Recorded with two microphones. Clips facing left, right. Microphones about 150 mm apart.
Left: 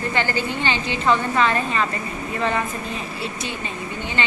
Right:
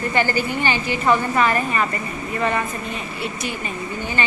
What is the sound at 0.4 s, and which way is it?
Speech, 20° left (ahead or behind).